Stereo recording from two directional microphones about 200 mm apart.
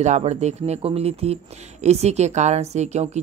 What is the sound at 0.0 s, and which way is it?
Speech, 35° right (ahead or behind).